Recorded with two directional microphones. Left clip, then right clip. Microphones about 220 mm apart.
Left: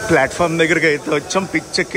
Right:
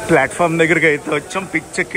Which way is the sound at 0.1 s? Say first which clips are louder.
Right 1 dB; 10° left (ahead or behind).